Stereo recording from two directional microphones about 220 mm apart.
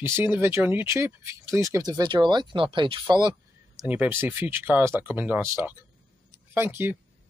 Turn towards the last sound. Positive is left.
turn(degrees=-10)  # may be behind; listen again after turning